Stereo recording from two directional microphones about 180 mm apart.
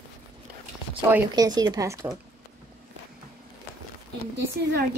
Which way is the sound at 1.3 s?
20° right (ahead or behind).